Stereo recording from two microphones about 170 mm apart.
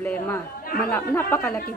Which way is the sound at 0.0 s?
10° left (ahead or behind).